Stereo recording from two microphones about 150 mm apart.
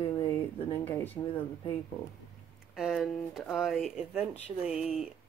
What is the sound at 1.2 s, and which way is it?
Speech, 35° left (ahead or behind).